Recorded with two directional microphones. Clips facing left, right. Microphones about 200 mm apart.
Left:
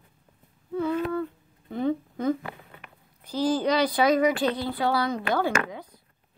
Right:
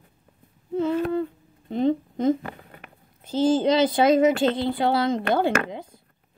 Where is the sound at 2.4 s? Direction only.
45° right (ahead or behind).